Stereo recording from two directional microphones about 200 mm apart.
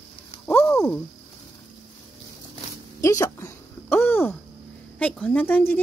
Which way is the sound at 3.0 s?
15° left (ahead or behind).